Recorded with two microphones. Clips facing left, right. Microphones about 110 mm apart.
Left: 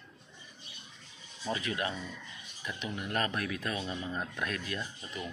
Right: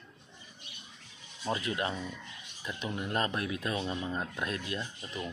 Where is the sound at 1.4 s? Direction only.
20° right (ahead or behind).